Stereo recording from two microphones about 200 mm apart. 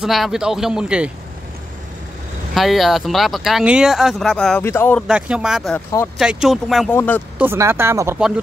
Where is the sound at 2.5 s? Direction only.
Centre (ahead or behind).